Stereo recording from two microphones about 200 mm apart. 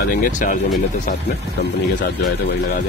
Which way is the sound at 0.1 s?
40° left (ahead or behind).